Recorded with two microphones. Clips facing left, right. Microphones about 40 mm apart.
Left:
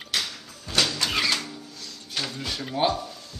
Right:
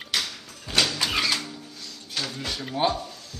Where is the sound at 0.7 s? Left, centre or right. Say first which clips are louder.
Right 1 dB; centre.